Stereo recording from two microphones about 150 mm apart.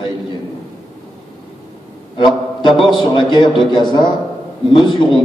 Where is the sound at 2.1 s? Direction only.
30° left (ahead or behind).